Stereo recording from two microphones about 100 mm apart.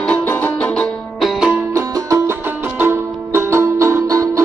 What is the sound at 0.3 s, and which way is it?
Music, 20° left (ahead or behind).